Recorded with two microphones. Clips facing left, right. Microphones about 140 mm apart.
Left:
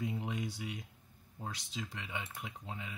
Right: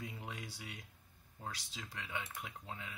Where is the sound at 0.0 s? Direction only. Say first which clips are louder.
Left 9 dB; 20° left (ahead or behind).